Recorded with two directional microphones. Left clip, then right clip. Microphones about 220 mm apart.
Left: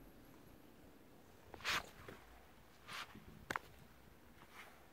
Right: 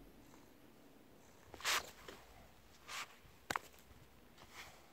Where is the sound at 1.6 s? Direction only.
25° right (ahead or behind).